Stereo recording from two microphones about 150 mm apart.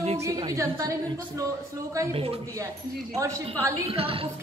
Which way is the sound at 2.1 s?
40° right (ahead or behind).